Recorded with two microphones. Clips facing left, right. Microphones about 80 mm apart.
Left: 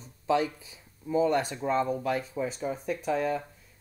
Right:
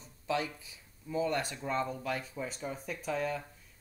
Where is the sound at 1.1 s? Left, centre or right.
Centre.